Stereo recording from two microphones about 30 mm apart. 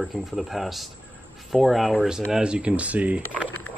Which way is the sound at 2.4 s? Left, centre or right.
Right.